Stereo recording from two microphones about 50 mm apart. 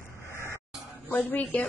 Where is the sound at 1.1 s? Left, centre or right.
Left.